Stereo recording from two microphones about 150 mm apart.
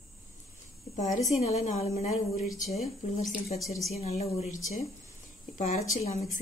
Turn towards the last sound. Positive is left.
turn(degrees=50)  # may be behind; listen again after turning